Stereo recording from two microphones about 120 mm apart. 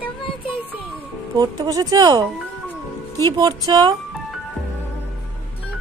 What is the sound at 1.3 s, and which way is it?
Speech, 30° right (ahead or behind).